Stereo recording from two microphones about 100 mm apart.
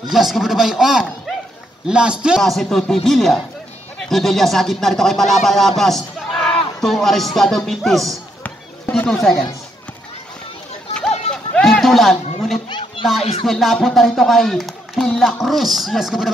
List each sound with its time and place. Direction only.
0.1 s speech: centre (ahead or behind)
8.5 s a sound: 15° left (ahead or behind)
9.1 s speech: 5° left (ahead or behind)
11.0 s run: 10° left (ahead or behind)
12.6 s children playing: 50° left (ahead or behind)
13.2 s music: 85° left
13.5 s speech: centre (ahead or behind)